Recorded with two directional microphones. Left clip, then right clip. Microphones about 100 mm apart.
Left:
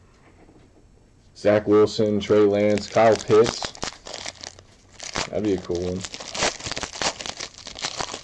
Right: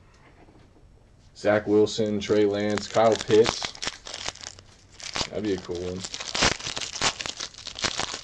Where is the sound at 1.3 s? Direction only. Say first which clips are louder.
Left 3 dB; 15° left (ahead or behind).